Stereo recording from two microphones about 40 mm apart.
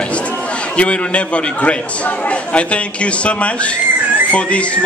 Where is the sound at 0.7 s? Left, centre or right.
Left.